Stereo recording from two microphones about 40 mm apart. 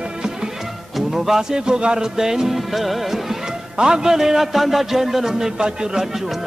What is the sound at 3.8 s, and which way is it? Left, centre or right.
A man's voice, centre.